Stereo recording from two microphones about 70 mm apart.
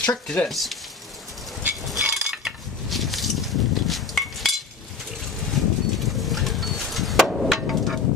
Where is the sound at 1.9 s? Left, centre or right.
Centre.